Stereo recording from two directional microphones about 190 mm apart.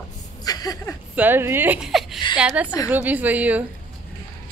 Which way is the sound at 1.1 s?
10° right (ahead or behind).